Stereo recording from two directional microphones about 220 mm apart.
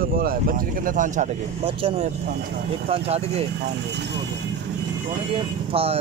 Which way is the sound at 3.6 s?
50° right (ahead or behind).